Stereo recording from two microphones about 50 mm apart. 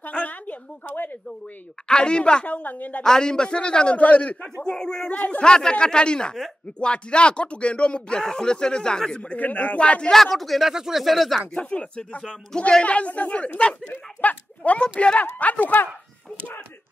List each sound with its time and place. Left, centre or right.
0.1 s a sound: left
1.9 s speech: centre
2.4 s speech: left
3.0 s speech: centre
4.6 s speech: centre
9.2 s speech: left
9.8 s speech: left
10.1 s speech: centre
10.7 s speech: centre
11.5 s speech: left